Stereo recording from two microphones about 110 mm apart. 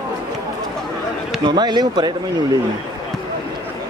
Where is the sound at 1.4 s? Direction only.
40° right (ahead or behind).